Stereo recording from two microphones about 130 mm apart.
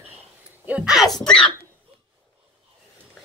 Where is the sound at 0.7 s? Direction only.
5° right (ahead or behind).